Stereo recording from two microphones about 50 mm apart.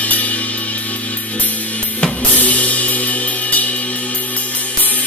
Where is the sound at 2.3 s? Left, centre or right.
Left.